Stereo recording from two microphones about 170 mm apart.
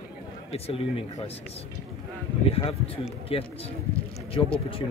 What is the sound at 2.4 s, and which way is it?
Speech, 35° left (ahead or behind).